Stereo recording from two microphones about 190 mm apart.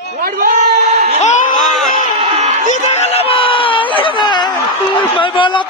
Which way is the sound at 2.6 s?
40° left (ahead or behind).